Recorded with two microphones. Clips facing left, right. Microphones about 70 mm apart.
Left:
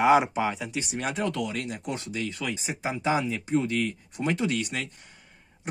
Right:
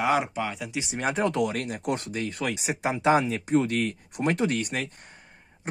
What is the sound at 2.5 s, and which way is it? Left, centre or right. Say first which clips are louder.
Speech: right 3 dB; right.